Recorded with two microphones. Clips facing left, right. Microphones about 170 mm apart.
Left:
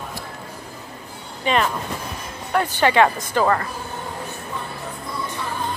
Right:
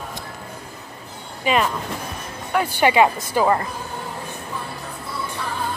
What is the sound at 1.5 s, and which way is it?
Speech, 5° right (ahead or behind).